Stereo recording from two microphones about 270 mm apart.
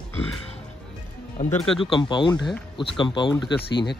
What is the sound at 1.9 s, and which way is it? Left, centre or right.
Speech, centre.